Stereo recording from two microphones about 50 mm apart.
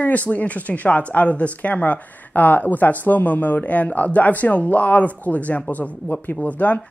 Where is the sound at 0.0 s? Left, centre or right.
Left.